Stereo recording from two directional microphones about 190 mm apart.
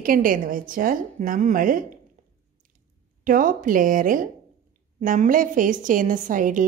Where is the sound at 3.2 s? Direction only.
45° right (ahead or behind).